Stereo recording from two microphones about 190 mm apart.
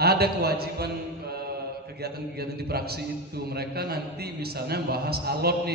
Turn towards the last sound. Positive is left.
turn(degrees=-55)  # may be behind; listen again after turning